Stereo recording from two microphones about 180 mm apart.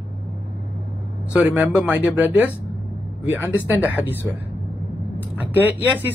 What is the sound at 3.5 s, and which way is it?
Speech, 10° right (ahead or behind).